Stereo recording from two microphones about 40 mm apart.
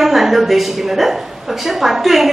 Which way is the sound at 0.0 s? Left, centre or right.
Centre.